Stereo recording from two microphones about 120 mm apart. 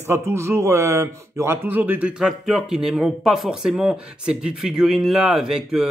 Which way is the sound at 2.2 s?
5° right (ahead or behind).